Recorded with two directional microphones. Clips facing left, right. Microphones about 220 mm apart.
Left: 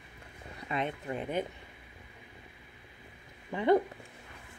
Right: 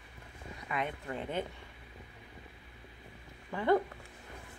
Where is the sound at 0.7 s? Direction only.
20° left (ahead or behind).